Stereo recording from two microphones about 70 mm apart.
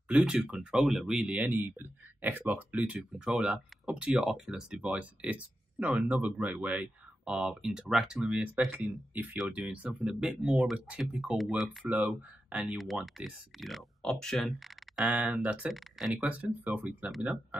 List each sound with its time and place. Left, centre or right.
0.1 s speech: centre
8.5 s speech: right; by 11.9 s centre
12.1 s speech: right
12.6 s speech: centre
15.0 s speech: centre